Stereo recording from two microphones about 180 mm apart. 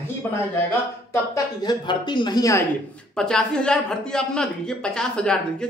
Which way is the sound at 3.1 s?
5° left (ahead or behind).